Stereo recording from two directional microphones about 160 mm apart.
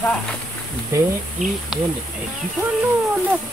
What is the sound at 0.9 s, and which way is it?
Speech, 15° right (ahead or behind).